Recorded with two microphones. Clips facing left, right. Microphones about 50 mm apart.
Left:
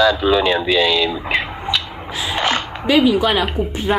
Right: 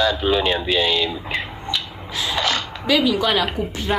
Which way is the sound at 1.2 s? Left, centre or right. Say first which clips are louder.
Left 6 dB; left.